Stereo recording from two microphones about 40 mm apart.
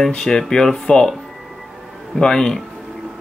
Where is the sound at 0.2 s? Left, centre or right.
Centre.